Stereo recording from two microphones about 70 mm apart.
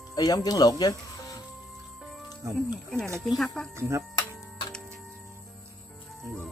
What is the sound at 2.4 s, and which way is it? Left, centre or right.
Speech, right.